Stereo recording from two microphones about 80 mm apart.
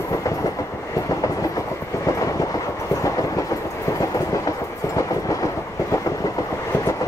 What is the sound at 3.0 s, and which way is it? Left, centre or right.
Train, left.